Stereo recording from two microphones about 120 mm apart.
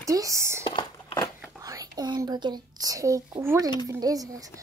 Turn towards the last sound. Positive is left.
turn(degrees=-30)  # may be behind; listen again after turning